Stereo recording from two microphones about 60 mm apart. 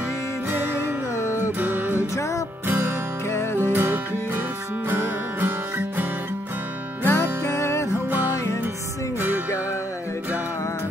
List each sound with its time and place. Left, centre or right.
1.1 s music: left
1.4 s music: right
2.0 s music: left
3.7 s music: right
7.1 s music: left